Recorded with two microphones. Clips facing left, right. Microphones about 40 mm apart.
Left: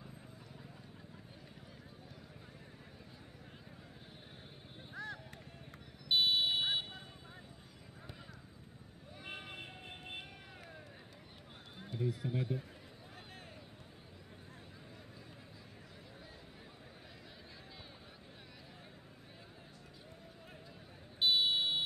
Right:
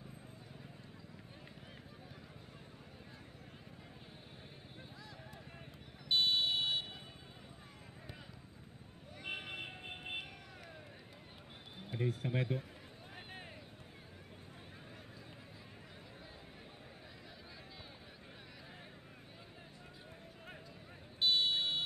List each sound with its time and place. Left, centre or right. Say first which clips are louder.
4.9 s a sound: left 9 dB; left
6.0 s fire alarm: left 1 dB; centre
9.2 s vehicle: right 4 dB; centre
12.0 s speech: right 1 dB; right
21.2 s buzzer: left 1 dB; centre